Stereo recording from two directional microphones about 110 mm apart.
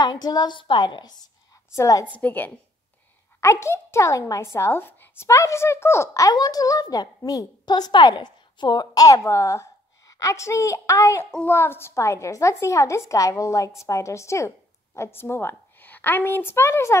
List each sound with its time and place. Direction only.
0.0 s a woman's voice: 40° left (ahead or behind)
1.8 s a woman's voice: 30° left (ahead or behind)
2.1 s a woman's voice: 15° left (ahead or behind)